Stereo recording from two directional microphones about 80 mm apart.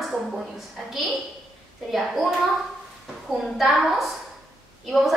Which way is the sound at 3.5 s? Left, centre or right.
Centre.